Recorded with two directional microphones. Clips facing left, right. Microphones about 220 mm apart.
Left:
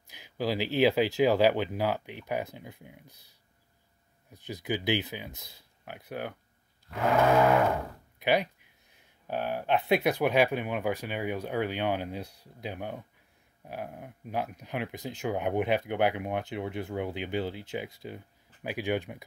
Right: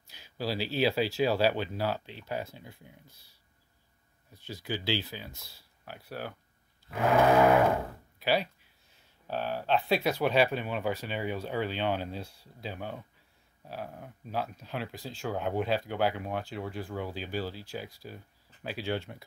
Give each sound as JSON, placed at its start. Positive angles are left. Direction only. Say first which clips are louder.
{"t": 0.0, "sound": "speech", "louder": "left 4 dB", "side_deg": 15}
{"t": 8.2, "sound": "speech", "louder": "left 2 dB", "side_deg": 15}